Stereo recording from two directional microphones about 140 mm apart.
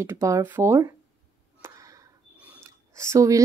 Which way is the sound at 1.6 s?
20° right (ahead or behind).